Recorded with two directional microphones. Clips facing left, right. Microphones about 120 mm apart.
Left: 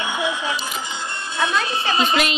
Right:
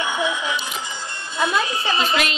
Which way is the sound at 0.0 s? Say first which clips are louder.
Right 1 dB; 30° left (ahead or behind).